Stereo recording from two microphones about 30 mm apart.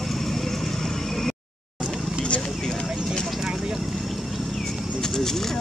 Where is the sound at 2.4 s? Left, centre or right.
Centre.